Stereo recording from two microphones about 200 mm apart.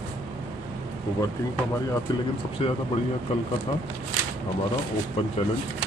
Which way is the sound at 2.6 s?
25° left (ahead or behind).